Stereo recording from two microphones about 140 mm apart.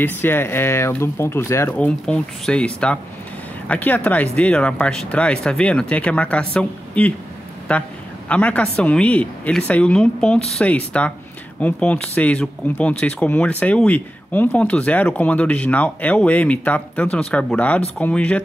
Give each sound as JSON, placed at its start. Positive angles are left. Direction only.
{"t": 0.0, "sound": "speech", "side_deg": 15}